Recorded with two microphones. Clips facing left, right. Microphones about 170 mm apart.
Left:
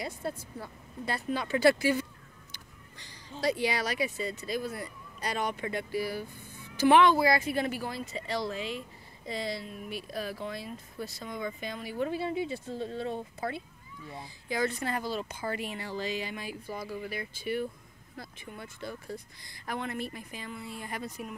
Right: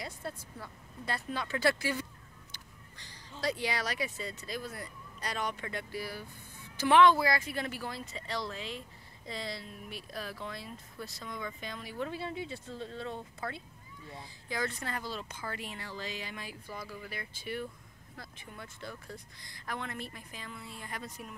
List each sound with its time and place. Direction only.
1.0 s speech: 10° left (ahead or behind)
16.6 s speech: 30° left (ahead or behind)
17.1 s speech: 10° left (ahead or behind)